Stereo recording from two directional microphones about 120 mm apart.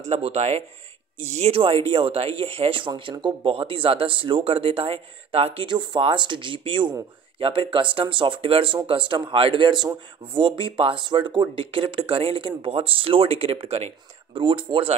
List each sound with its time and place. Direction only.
0.0 s speech: 65° right (ahead or behind)
14.4 s speech: 45° right (ahead or behind)